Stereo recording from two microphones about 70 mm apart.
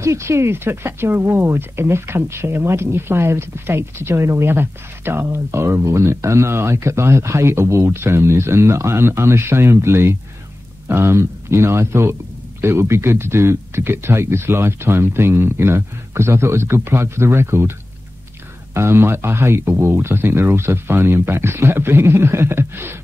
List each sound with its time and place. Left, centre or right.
0.0 s speech: right